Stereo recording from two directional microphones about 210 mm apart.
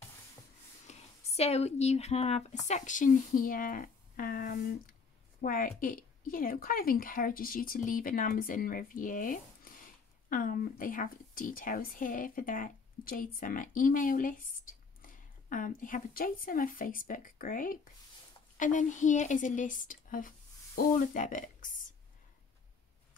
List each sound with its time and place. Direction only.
0.8 s a woman's voice: 30° left (ahead or behind)